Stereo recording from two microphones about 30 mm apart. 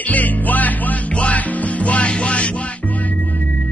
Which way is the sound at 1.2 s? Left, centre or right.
Left.